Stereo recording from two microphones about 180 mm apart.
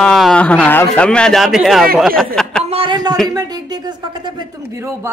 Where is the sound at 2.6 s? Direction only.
30° right (ahead or behind).